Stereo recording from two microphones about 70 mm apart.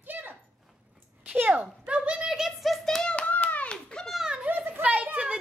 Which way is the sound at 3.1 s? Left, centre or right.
Centre.